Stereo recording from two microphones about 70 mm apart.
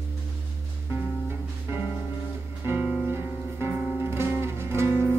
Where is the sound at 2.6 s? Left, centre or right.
Right.